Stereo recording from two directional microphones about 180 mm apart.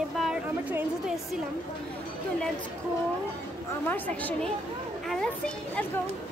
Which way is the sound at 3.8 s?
10° left (ahead or behind).